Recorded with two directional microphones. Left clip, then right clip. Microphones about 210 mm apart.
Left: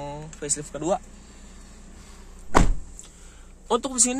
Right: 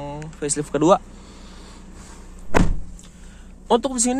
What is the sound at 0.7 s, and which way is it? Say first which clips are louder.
Speech: right 10 dB; 50° right (ahead or behind).